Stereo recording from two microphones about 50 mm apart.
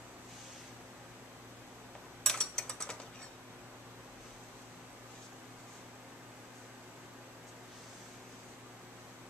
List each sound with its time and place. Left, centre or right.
2.2 s ratchet: centre